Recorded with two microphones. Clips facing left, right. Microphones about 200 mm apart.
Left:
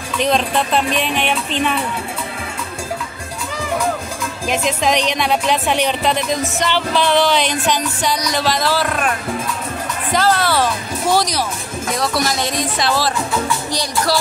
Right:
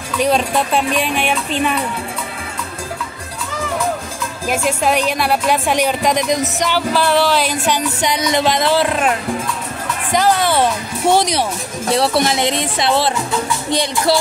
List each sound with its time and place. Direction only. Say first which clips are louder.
0.2 s speech: right 1 dB; 10° right (ahead or behind)
4.5 s speech: right 1 dB; 5° right (ahead or behind)
8.0 s speech: right 3 dB; 20° right (ahead or behind)
10.1 s speech: right 2 dB; 15° right (ahead or behind)